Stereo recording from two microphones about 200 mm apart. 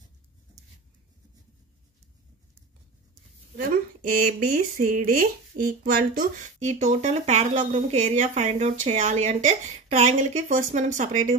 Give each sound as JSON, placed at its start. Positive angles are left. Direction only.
{"t": 4.1, "sound": "speech", "side_deg": -40}